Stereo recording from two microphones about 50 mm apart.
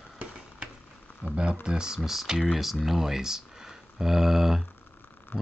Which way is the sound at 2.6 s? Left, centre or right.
Centre.